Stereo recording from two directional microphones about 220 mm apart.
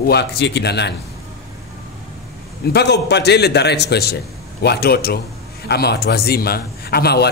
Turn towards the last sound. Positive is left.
turn(degrees=45)  # may be behind; listen again after turning